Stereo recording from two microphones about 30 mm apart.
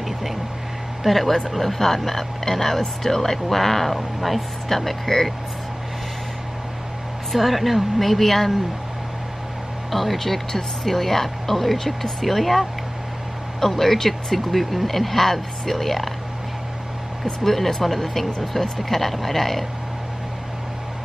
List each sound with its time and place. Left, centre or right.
1.0 s speech: centre
7.3 s speech: centre
9.8 s speech: centre
17.2 s speech: centre